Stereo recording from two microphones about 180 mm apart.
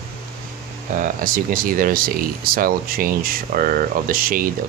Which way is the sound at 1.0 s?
50° right (ahead or behind).